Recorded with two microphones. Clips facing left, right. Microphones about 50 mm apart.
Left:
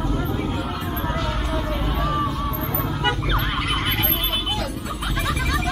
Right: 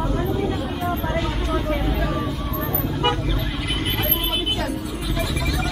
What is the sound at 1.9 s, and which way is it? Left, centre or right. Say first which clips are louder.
Vehicle: even; left.